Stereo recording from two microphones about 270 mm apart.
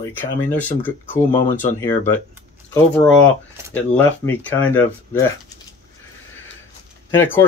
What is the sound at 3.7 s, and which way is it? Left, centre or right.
Speech, centre.